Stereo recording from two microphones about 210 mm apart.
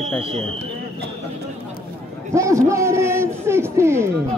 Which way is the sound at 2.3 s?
15° right (ahead or behind).